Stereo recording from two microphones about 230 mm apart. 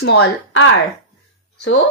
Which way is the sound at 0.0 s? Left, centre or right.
Left.